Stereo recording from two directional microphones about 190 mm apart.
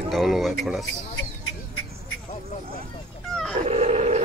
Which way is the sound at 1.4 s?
90° left.